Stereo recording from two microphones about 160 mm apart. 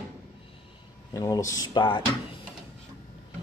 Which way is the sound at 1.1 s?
20° left (ahead or behind).